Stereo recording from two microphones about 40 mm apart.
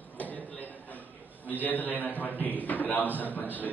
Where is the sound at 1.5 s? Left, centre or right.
Left.